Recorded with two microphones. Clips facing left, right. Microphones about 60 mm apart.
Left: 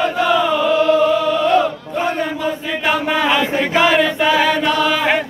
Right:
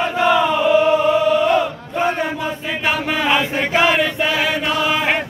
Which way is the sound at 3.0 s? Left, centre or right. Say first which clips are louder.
Left 1 dB; centre.